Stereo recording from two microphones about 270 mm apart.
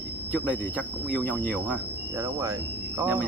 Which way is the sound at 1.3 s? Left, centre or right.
Centre.